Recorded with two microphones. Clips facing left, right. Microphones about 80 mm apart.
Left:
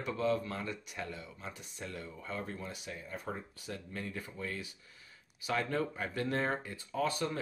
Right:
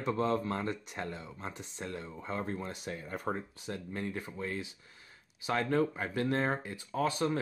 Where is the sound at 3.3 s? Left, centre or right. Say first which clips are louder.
Right 6 dB; right.